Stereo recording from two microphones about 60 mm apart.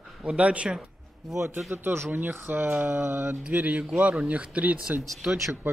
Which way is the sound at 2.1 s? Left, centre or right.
Right.